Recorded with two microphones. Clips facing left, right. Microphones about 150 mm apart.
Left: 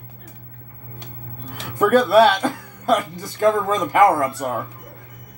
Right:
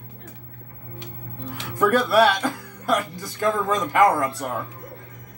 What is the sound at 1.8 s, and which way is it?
Speech, 20° left (ahead or behind).